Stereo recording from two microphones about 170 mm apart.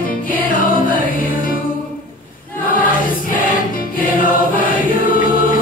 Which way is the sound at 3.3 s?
55° left (ahead or behind).